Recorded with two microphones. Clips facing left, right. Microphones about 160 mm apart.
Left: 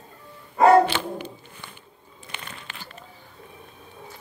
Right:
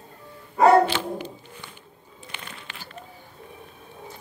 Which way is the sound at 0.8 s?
55° left (ahead or behind).